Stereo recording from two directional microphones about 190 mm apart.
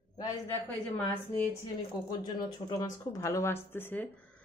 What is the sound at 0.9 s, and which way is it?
Speech, 10° left (ahead or behind).